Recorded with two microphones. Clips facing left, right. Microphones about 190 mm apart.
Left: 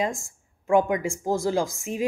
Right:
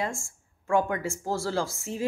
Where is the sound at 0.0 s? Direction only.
15° left (ahead or behind).